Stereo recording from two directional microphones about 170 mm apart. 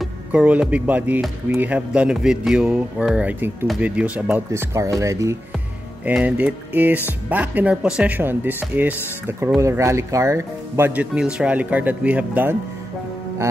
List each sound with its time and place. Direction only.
0.0 s speech: 5° right (ahead or behind)